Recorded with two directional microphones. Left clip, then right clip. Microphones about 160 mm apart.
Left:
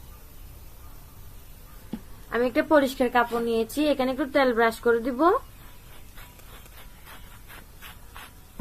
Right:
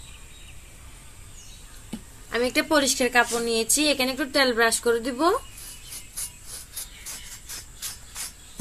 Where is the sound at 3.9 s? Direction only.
20° left (ahead or behind).